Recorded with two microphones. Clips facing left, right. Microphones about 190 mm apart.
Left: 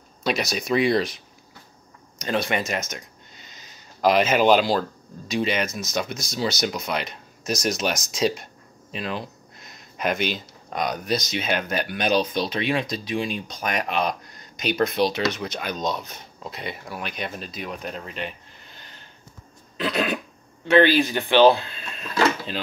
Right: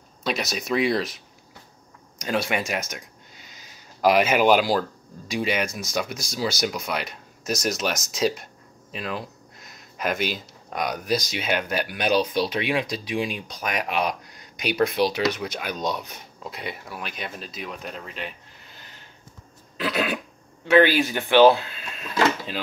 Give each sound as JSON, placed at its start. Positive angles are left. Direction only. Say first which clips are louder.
{"t": 0.2, "sound": "speech", "louder": "left 2 dB", "side_deg": 0}
{"t": 19.8, "sound": "speech", "louder": "left 1 dB", "side_deg": -5}